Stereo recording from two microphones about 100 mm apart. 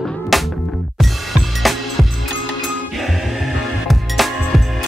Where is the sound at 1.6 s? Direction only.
Centre (ahead or behind).